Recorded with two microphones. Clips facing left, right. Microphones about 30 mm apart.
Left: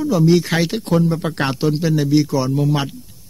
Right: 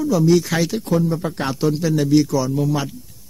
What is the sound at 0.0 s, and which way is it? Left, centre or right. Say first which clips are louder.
Speech: left 1 dB; left.